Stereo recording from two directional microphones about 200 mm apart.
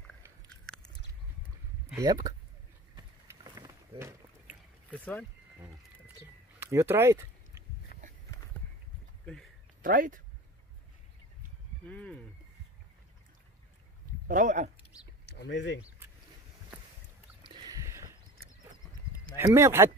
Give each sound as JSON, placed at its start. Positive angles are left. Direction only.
{"t": 2.0, "sound": "speech", "side_deg": -20}
{"t": 3.5, "sound": "a sound", "side_deg": -20}
{"t": 4.9, "sound": "speech", "side_deg": 10}
{"t": 6.6, "sound": "a sound", "side_deg": -10}
{"t": 7.9, "sound": "a sound", "side_deg": 45}
{"t": 9.2, "sound": "a sound", "side_deg": 5}
{"t": 9.8, "sound": "speech", "side_deg": -40}
{"t": 11.9, "sound": "speech", "side_deg": 5}
{"t": 14.2, "sound": "speech", "side_deg": -40}
{"t": 15.4, "sound": "speech", "side_deg": 65}
{"t": 17.4, "sound": "rowboat", "side_deg": -20}
{"t": 19.3, "sound": "speech", "side_deg": -15}